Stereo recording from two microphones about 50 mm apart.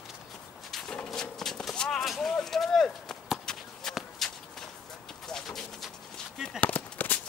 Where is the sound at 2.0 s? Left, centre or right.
Centre.